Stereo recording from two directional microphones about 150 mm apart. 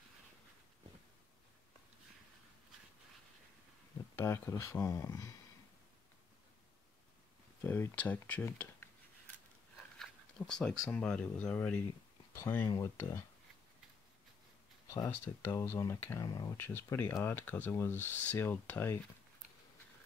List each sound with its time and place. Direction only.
4.1 s speech: 15° left (ahead or behind)
7.6 s speech: 15° left (ahead or behind)
9.9 s speech: 5° left (ahead or behind)
12.6 s speech: 20° left (ahead or behind)
15.0 s speech: 15° left (ahead or behind)